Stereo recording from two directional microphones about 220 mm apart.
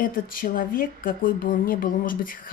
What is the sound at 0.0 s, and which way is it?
Speech, 40° left (ahead or behind).